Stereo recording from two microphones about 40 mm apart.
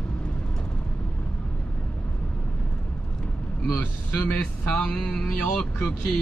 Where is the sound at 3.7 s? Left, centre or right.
Left.